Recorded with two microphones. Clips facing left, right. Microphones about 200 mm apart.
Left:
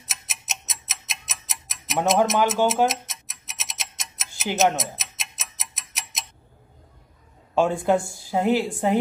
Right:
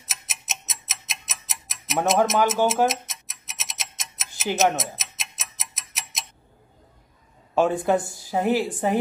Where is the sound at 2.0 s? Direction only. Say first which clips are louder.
Even; centre (ahead or behind).